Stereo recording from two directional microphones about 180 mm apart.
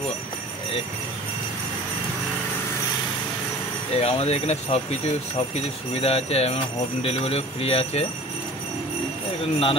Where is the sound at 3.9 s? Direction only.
35° left (ahead or behind).